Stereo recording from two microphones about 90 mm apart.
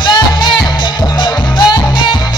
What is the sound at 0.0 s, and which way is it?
Music, 60° left (ahead or behind).